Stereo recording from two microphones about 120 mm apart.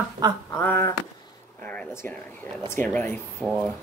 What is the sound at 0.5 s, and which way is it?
Speech, 20° left (ahead or behind).